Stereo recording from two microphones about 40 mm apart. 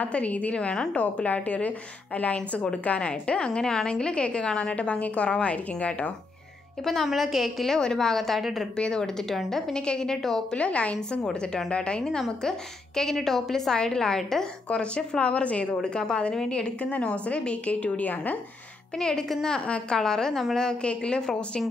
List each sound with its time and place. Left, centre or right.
0.0 s a woman's voice: left
6.8 s a woman's voice: centre
7.7 s a woman's voice: centre
8.7 s a woman's voice: left
10.5 s a woman's voice: left; by 14.5 s centre
14.7 s a woman's voice: left
18.1 s speech: left
18.9 s a woman's voice: centre
20.8 s a woman's voice: left